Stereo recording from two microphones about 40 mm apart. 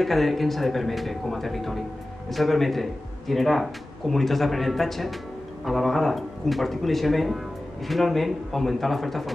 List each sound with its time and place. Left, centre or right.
0.0 s speech: centre